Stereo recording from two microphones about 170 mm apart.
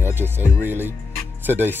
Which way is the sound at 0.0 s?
15° right (ahead or behind).